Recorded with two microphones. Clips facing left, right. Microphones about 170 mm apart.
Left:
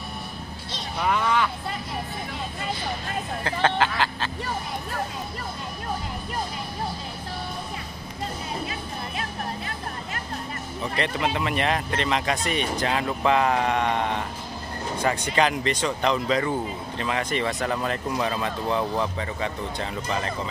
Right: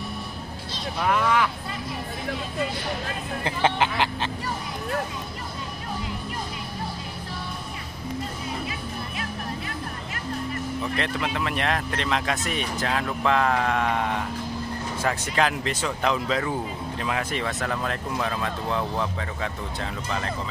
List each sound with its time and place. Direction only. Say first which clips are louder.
1.0 s vehicle: right 1 dB; centre (ahead or behind)
3.4 s speech: even; 15° right (ahead or behind)
11.0 s speech: left 5 dB; centre (ahead or behind)